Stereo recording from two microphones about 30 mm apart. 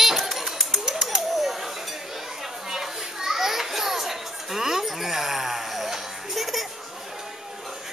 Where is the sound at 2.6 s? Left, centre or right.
Centre.